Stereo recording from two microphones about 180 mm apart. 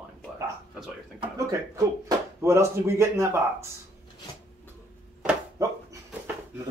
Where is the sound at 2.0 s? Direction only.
15° right (ahead or behind).